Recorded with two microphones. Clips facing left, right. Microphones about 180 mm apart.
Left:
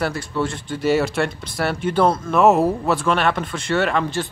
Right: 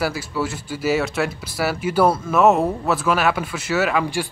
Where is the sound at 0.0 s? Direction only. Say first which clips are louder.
Left 1 dB; 5° right (ahead or behind).